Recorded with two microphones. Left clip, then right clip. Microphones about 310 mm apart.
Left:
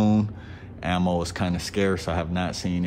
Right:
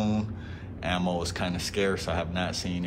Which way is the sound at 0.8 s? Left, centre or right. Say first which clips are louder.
Left 4 dB; left.